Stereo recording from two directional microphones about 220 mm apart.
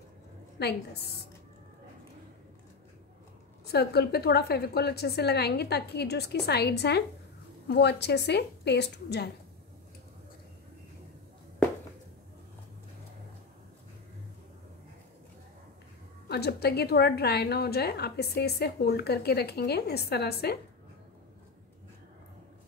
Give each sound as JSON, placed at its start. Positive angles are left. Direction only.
{"t": 0.6, "sound": "a woman's voice", "side_deg": 50}
{"t": 3.6, "sound": "a woman's voice", "side_deg": 45}
{"t": 16.3, "sound": "a woman's voice", "side_deg": 45}